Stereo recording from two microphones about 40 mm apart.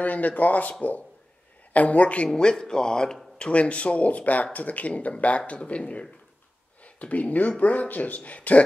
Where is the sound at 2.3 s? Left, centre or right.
Centre.